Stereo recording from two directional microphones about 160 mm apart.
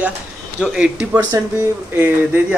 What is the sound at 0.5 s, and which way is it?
Speech, 5° right (ahead or behind).